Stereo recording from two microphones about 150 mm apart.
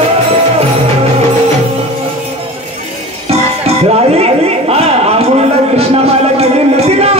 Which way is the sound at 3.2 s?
45° right (ahead or behind).